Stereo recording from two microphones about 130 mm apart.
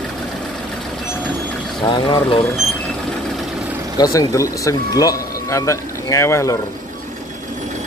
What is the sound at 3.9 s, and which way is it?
Speech, 25° left (ahead or behind).